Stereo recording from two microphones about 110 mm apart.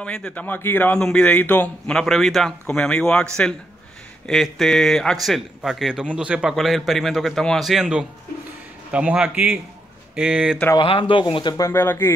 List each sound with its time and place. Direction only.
0.0 s speech: 10° left (ahead or behind)
0.9 s a man's voice: 5° left (ahead or behind)
4.3 s a man's voice: 5° left (ahead or behind)
10.8 s speech: 50° left (ahead or behind)
11.5 s speech: 25° left (ahead or behind)